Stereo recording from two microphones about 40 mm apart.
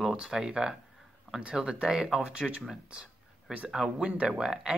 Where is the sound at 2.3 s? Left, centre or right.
Right.